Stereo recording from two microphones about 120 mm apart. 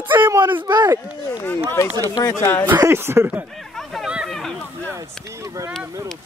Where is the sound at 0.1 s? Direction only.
15° right (ahead or behind).